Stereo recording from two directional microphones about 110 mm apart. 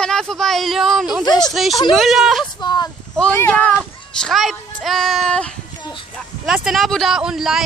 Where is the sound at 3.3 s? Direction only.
15° left (ahead or behind).